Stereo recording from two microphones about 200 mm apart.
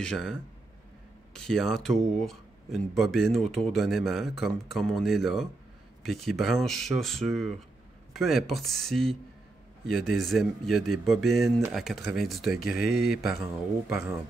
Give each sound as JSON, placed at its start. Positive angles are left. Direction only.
{"t": 0.0, "sound": "speech", "side_deg": 5}
{"t": 12.5, "sound": "speech", "side_deg": 50}
{"t": 12.9, "sound": "speech", "side_deg": -5}